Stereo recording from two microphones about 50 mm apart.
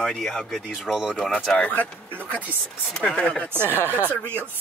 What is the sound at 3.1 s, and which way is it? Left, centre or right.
Speech, centre.